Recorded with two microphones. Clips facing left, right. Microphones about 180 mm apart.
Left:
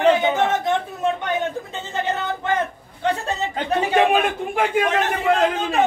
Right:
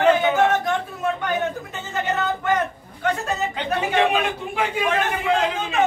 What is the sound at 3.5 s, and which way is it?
A man's voice, 50° left (ahead or behind).